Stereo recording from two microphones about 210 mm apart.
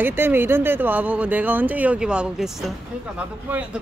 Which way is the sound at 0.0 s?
10° right (ahead or behind).